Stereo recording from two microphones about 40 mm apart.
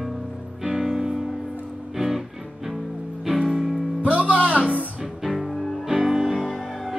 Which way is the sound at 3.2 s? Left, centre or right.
Centre.